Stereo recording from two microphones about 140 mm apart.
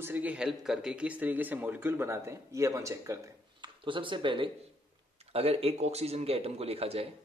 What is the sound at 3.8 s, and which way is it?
Speech, 35° right (ahead or behind).